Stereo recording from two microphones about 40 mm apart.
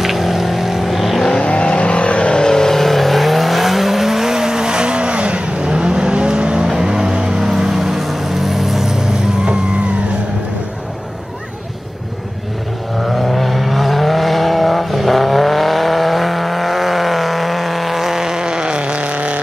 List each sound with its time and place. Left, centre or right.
0.0 s vehicle: centre
1.4 s vehicle: left
2.4 s vehicle: centre
13.1 s vehicle: centre; by 19.4 s right